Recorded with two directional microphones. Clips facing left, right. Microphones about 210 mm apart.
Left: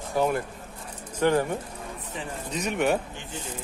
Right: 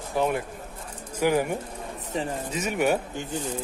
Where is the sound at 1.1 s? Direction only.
10° right (ahead or behind).